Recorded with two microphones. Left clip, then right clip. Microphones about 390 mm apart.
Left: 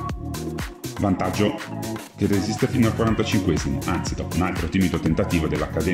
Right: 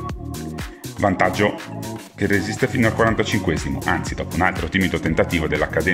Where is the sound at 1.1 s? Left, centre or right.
Centre.